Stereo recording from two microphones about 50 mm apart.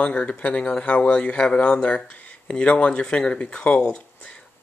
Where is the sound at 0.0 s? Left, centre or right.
Left.